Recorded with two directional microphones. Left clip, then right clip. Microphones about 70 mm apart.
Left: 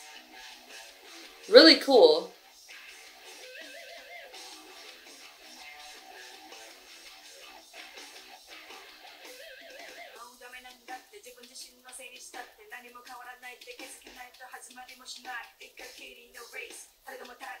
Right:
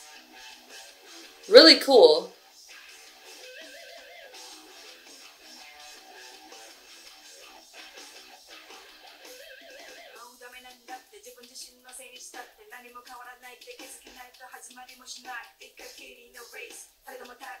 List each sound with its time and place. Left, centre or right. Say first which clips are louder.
0.1 s music: even; left
1.5 s speech: right 3 dB; centre
3.3 s music: right 1 dB; left
7.7 s music: even; left
12.1 s a sound: right 2 dB; left